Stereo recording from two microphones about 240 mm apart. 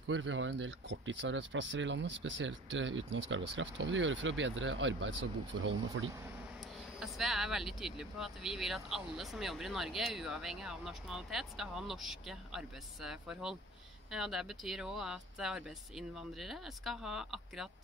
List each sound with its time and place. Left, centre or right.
0.1 s speech: right
7.0 s speech: centre